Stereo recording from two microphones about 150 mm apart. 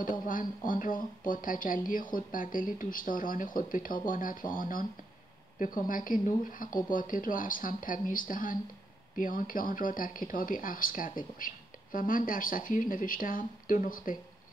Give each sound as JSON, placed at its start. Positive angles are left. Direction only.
{"t": 0.0, "sound": "speech", "side_deg": 65}